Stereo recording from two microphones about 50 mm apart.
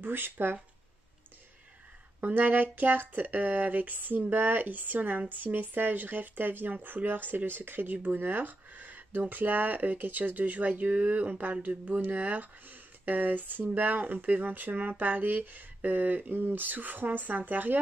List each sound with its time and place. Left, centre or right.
0.0 s speech: right
2.1 s speech: right